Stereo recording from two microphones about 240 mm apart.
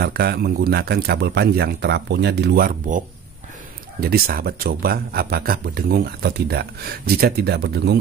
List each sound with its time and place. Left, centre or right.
0.0 s a man's voice: right
4.0 s a man's voice: right